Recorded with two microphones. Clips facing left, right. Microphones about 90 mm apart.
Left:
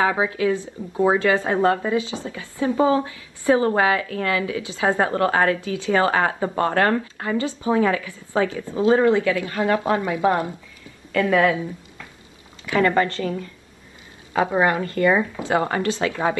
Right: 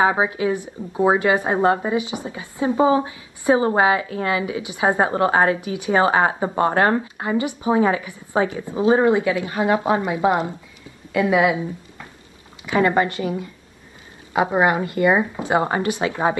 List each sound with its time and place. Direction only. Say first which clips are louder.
0.0 s speech: right 2 dB; 25° right (ahead or behind)
12.6 s speech: right 1 dB; 20° right (ahead or behind)